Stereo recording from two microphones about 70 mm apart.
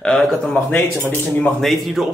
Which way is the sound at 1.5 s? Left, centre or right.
Centre.